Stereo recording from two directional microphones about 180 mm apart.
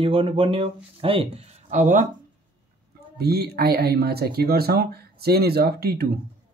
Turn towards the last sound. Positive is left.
turn(degrees=-60)  # may be behind; listen again after turning